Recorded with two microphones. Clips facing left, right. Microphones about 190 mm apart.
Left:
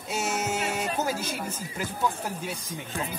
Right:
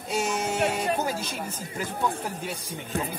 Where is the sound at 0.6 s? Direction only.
60° right (ahead or behind).